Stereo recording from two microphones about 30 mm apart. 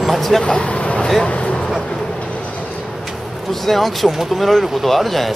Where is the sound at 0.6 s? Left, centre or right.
Left.